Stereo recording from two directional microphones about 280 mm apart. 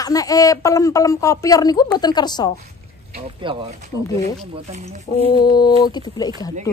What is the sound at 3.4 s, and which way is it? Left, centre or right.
Speech, centre.